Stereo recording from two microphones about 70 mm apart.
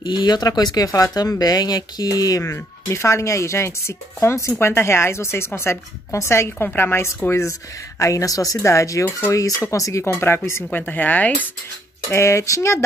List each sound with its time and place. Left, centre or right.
0.0 s speech: left
2.4 s speech: left
6.6 s speech: left
8.0 s a woman's voice: left
10.2 s speech: left
12.1 s a woman's voice: left